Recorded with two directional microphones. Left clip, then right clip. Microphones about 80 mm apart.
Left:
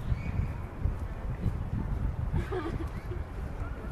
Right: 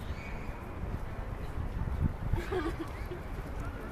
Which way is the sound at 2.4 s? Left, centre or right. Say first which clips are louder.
Right 1 dB; right.